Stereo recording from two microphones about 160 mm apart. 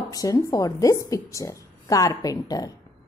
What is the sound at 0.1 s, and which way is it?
A woman's voice, 20° left (ahead or behind).